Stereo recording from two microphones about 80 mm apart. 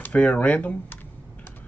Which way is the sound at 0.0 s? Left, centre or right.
Centre.